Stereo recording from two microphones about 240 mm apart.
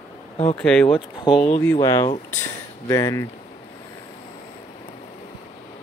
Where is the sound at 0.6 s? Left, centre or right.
Centre.